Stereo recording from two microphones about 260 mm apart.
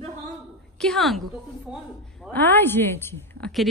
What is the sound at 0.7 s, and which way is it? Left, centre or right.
A woman's voice, centre.